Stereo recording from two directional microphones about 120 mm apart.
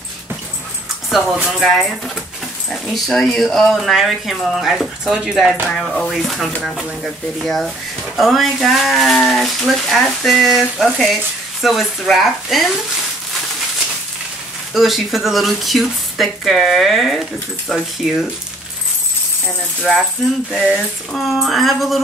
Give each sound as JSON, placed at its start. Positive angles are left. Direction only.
{"t": 1.1, "sound": "speech", "side_deg": -5}
{"t": 14.7, "sound": "speech", "side_deg": 0}
{"t": 19.8, "sound": "speech", "side_deg": 0}